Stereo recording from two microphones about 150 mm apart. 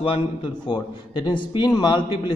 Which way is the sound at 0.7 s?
30° left (ahead or behind).